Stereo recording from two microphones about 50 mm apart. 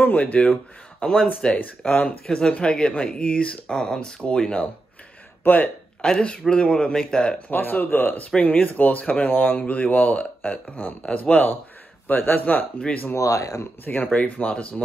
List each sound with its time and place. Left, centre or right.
0.0 s speech: left
1.0 s a man's voice: centre
5.4 s speech: left
6.0 s a man's voice: centre
7.5 s speech: left
9.3 s speech: left
13.1 s speech: left
13.8 s speech: left